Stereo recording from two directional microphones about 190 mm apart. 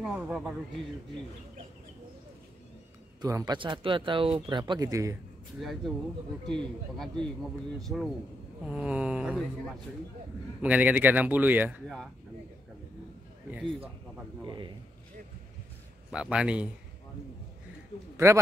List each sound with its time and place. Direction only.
0.0 s speech: centre (ahead or behind)
3.2 s speech: 20° right (ahead or behind)
5.6 s speech: centre (ahead or behind)
14.4 s speech: 25° right (ahead or behind)
16.1 s speech: 5° right (ahead or behind)
18.1 s a sound: 15° right (ahead or behind)